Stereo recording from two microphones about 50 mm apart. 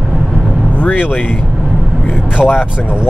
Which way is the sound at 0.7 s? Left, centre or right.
Left.